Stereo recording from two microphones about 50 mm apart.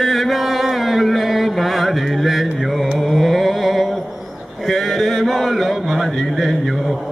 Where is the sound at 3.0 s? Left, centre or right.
Centre.